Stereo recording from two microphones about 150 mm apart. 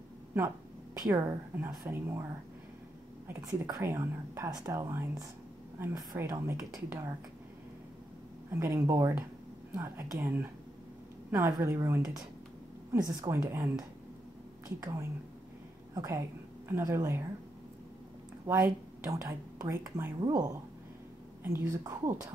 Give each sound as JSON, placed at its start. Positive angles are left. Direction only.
{"t": 1.0, "sound": "speech", "side_deg": -25}
{"t": 3.3, "sound": "speech", "side_deg": -20}
{"t": 8.5, "sound": "a woman's voice", "side_deg": -20}
{"t": 13.1, "sound": "a woman's voice", "side_deg": -25}
{"t": 18.6, "sound": "speech", "side_deg": -20}